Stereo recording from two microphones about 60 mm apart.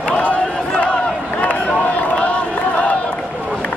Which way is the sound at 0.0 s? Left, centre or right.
Left.